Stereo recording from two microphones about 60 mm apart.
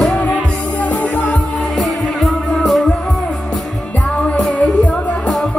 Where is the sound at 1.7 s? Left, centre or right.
Centre.